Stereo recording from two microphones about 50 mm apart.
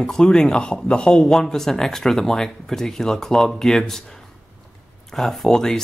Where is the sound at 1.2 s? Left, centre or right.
Centre.